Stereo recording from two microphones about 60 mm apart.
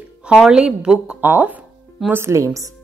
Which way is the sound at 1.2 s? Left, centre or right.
Right.